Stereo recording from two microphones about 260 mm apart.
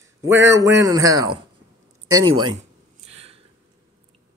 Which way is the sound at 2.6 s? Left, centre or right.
Right.